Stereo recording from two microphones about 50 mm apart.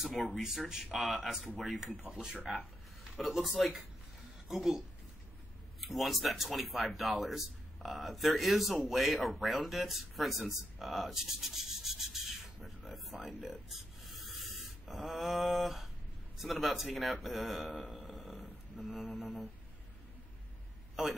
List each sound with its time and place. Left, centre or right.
0.0 s speech: centre
2.0 s speech: centre
2.4 s speech: centre
12.6 s a sound: centre
13.4 s gasp: centre
16.3 s speech: centre
18.0 s snoring: centre
18.9 s speech: centre
21.0 s speech: centre